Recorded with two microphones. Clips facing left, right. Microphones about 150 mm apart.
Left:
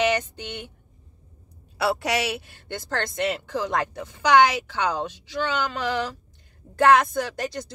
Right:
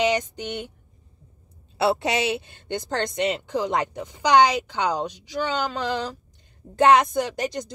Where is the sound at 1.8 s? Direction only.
25° right (ahead or behind).